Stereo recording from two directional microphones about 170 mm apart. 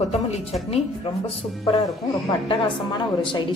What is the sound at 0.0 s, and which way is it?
Speech, 40° left (ahead or behind).